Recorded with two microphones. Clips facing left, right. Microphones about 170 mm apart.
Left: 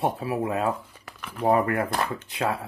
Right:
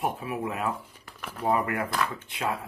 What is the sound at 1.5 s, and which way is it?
Speech, 40° left (ahead or behind).